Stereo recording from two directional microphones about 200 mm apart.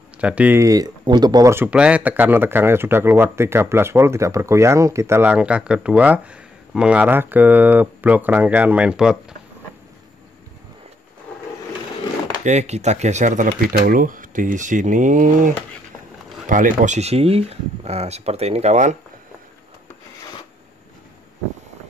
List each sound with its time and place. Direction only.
0.2 s speech: 5° right (ahead or behind)
12.4 s speech: 35° right (ahead or behind)